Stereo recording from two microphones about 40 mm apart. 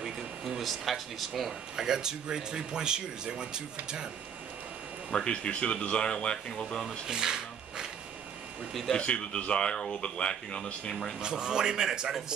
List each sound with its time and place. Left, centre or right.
0.6 s speech: centre
1.8 s speech: centre
5.1 s speech: left
7.1 s a sound: centre
8.9 s speech: left
11.1 s speech: right